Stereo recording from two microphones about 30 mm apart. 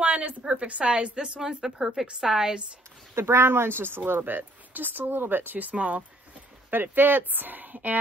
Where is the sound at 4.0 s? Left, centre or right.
Right.